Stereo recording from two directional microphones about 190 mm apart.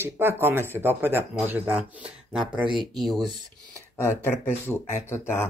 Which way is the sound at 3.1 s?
Centre (ahead or behind).